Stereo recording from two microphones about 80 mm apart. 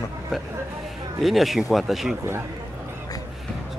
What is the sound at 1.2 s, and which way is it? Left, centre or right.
Speech, centre.